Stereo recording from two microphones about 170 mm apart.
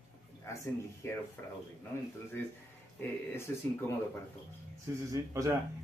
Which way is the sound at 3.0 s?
15° left (ahead or behind).